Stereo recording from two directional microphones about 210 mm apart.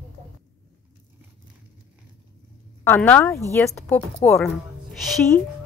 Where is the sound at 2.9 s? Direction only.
10° left (ahead or behind).